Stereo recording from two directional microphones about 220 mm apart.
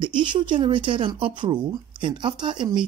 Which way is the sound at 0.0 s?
20° right (ahead or behind).